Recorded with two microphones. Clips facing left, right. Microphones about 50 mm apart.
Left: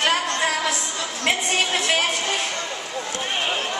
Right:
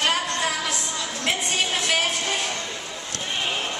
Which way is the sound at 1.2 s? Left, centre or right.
Left.